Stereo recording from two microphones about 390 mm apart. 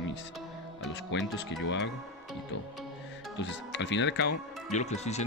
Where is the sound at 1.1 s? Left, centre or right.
Left.